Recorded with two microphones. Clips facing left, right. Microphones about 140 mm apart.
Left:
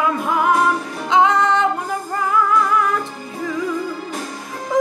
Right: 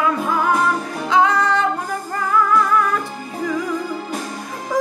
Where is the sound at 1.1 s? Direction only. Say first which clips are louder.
Left 1 dB; 20° left (ahead or behind).